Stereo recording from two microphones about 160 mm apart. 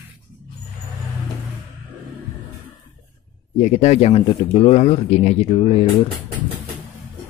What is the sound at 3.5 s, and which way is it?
Speech, 50° left (ahead or behind).